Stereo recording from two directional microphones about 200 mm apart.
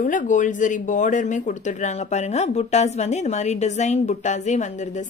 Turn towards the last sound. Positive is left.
turn(degrees=35)  # may be behind; listen again after turning